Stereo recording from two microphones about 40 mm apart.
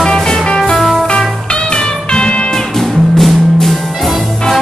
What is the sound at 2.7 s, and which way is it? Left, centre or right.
Music, centre.